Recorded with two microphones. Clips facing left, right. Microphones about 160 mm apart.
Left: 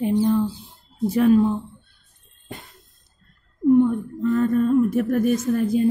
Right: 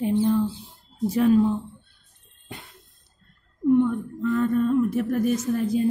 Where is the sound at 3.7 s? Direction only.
40° left (ahead or behind).